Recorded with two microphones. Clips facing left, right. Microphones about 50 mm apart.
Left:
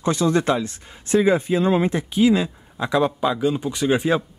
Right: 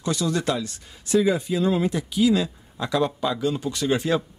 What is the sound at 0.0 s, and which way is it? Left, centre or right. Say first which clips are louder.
Speech: left 5 dB; left.